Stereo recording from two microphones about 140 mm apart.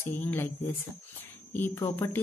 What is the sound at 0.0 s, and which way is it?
A woman's voice, 15° left (ahead or behind).